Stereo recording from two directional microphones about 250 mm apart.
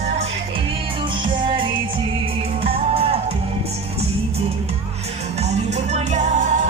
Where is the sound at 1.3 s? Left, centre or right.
Centre.